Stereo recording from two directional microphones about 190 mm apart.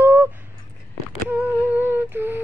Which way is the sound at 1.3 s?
10° right (ahead or behind).